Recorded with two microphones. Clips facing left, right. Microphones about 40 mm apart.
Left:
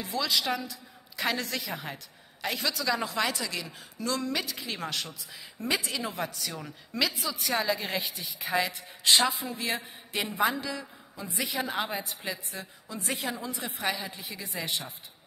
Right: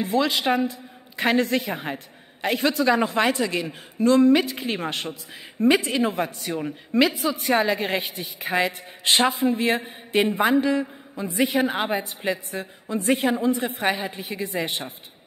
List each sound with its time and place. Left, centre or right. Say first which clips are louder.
0.0 s a man's voice: right 8 dB; right